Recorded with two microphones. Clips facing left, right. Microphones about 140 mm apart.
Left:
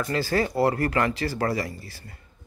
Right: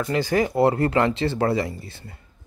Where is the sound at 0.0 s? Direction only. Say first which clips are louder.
Right 3 dB; 20° right (ahead or behind).